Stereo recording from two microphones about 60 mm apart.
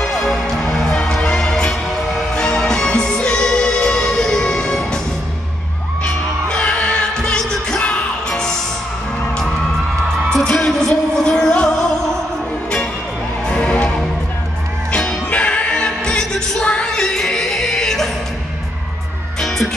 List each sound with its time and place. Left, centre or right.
0.0 s music: centre
6.0 s music: left
10.3 s music: centre
13.5 s music: centre
19.4 s music: centre